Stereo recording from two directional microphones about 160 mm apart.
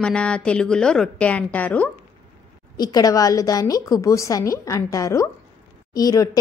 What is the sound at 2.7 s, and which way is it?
A woman's voice, 25° left (ahead or behind).